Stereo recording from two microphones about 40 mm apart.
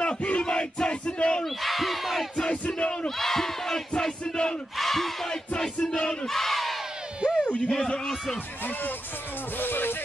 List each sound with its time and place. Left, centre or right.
0.0 s battle cry: left
0.4 s battle cry: left
1.4 s speech: centre
2.5 s music: left
3.2 s speech: centre
5.8 s music: left
6.2 s battle cry: centre
7.2 s music: left
7.7 s music: centre
9.6 s music: left